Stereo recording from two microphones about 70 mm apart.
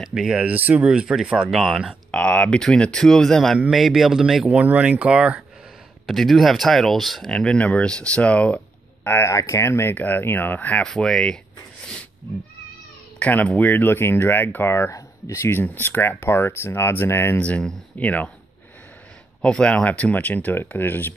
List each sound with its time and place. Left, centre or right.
0.1 s speech: centre
0.5 s speech: right
0.8 s speech: centre
2.0 s speech: centre
4.6 s speech: centre
6.0 s speech: centre
7.2 s speech: centre
9.3 s speech: left
9.9 s speech: left
10.8 s speech: centre
13.2 s speech: left
15.6 s speech: left
17.4 s speech: centre
19.4 s speech: centre; by 21.1 s left